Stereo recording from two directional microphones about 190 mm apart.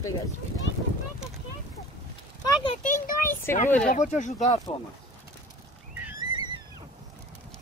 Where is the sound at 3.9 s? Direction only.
40° left (ahead or behind).